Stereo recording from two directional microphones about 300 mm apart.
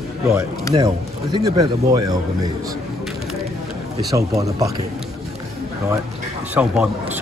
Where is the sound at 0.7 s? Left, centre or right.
Centre.